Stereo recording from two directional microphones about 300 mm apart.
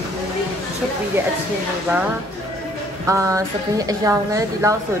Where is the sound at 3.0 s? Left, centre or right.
Centre.